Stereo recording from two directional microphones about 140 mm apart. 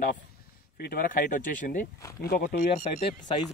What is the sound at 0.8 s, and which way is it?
Speech, 85° left.